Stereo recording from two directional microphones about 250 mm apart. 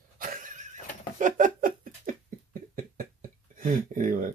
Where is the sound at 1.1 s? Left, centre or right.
Right.